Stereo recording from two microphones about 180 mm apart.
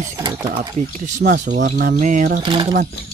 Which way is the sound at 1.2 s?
65° right (ahead or behind).